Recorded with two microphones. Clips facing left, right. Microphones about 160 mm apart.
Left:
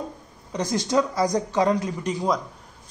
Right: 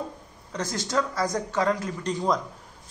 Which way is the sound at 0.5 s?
15° left (ahead or behind).